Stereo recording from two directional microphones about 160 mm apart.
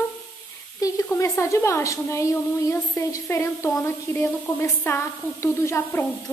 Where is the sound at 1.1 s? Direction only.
15° left (ahead or behind).